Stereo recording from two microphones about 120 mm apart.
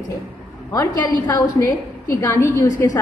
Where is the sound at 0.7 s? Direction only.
30° left (ahead or behind).